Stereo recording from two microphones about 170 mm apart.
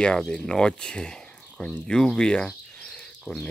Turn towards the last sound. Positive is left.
turn(degrees=5)  # may be behind; listen again after turning